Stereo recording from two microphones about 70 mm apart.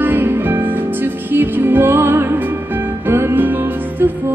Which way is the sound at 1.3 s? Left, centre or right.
Right.